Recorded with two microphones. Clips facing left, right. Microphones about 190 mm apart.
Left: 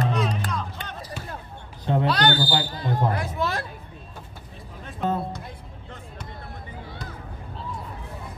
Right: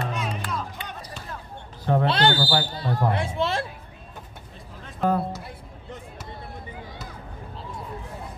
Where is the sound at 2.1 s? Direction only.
30° right (ahead or behind).